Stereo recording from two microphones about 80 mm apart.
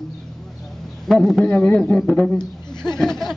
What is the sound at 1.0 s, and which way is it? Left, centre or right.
Speech, centre.